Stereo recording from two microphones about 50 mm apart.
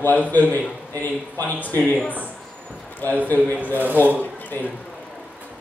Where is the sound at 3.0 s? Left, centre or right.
Left.